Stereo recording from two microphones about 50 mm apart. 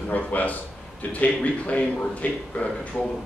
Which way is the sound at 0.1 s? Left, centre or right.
Left.